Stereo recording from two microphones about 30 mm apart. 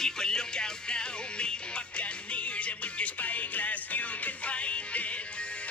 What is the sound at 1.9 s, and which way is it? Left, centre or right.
Music, left.